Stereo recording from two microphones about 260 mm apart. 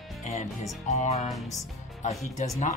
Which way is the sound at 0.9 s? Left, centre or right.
Left.